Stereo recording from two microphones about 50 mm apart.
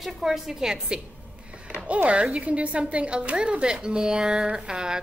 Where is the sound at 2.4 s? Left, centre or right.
Right.